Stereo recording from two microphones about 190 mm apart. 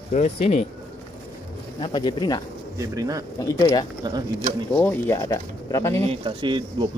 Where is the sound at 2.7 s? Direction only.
15° right (ahead or behind).